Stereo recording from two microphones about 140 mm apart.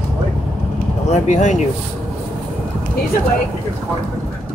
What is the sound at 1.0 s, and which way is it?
Speech, 60° left (ahead or behind).